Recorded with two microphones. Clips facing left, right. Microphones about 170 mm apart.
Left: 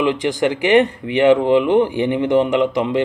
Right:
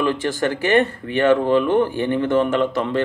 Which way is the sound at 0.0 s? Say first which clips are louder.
Left 3 dB; 15° left (ahead or behind).